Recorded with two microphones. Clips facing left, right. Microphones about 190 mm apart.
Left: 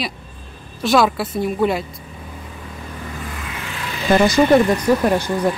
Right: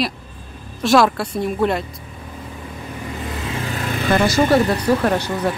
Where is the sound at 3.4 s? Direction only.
30° right (ahead or behind).